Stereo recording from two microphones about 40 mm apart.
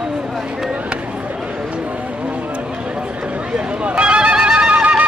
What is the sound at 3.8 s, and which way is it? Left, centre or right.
Neigh, right.